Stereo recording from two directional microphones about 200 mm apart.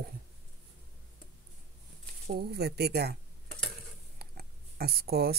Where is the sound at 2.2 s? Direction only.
50° right (ahead or behind).